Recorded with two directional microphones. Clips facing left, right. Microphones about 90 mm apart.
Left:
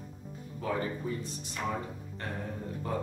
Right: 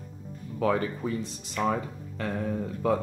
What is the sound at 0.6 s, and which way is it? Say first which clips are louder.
Speech: right 7 dB; 90° right.